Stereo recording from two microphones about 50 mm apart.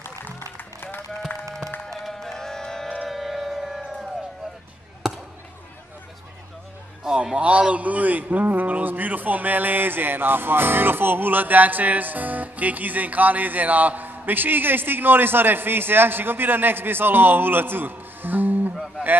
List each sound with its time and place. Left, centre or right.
1.9 s music: centre
3.1 s music: centre
5.0 s basketball bounce: centre
7.0 s a man's voice: centre; by 18.7 s right